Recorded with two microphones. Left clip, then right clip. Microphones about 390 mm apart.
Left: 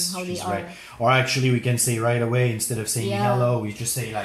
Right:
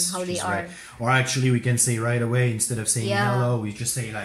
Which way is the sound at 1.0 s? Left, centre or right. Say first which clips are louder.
Left 3 dB; centre.